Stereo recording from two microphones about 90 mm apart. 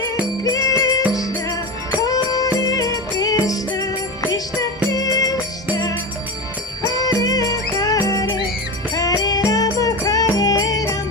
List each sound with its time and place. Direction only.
0.4 s music: 40° left (ahead or behind)
4.9 s music: 40° left (ahead or behind)
7.2 s music: 45° left (ahead or behind)